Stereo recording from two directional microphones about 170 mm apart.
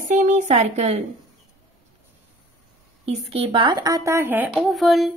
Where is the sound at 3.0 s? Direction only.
35° right (ahead or behind); by 4.5 s 10° right (ahead or behind).